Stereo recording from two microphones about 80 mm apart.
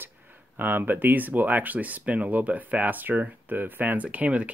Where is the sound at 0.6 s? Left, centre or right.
Right.